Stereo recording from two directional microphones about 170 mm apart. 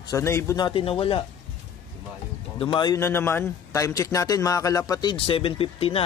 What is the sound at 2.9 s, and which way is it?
A man's voice, 15° left (ahead or behind).